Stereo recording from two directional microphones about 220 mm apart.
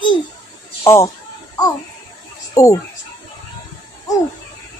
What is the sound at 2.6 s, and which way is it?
Speech, 15° left (ahead or behind).